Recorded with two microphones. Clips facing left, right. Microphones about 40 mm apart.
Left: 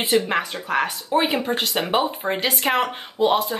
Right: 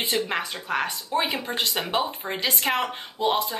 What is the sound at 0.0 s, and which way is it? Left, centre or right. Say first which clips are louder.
Speech: left 6 dB; centre.